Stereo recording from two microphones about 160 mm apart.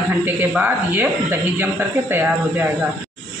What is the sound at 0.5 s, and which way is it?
Speech, 10° right (ahead or behind).